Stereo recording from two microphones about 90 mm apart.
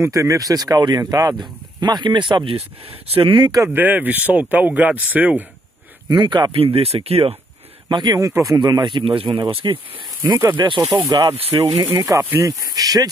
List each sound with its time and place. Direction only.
0.0 s speech: 35° right (ahead or behind)
1.8 s speech: 55° right (ahead or behind); by 3.4 s 75° right (ahead or behind)
3.6 s speech: 20° right (ahead or behind)
6.0 s speech: 55° right (ahead or behind)
6.5 s speech: 90° right
7.9 s speech: 50° right (ahead or behind)
8.3 s speech: 35° right (ahead or behind)
8.5 s speech: 50° right (ahead or behind); by 10.0 s 75° right (ahead or behind)
10.6 s speech: 50° right (ahead or behind)
11.5 s speech: 35° right (ahead or behind)